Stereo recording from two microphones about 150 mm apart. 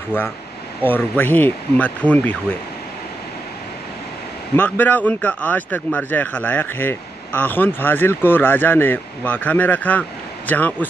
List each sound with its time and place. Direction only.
0.1 s speech: 15° left (ahead or behind)
4.6 s speech: 10° left (ahead or behind)